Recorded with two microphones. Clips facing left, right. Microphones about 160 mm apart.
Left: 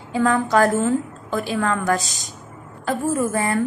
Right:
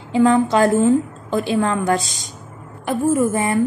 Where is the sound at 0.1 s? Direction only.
25° right (ahead or behind).